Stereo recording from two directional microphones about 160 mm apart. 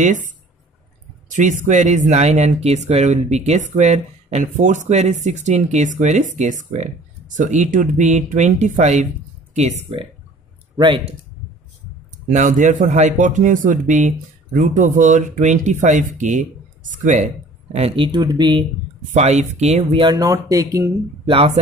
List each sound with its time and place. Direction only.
0.0 s speech: 50° right (ahead or behind)
1.3 s speech: 50° right (ahead or behind)
12.3 s speech: 55° right (ahead or behind)
17.7 s speech: 35° right (ahead or behind)
19.1 s speech: 45° right (ahead or behind); by 20.9 s 20° right (ahead or behind)